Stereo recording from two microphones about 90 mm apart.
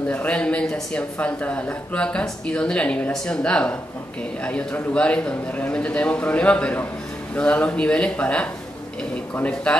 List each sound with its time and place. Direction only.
0.1 s a man's voice: 15° left (ahead or behind)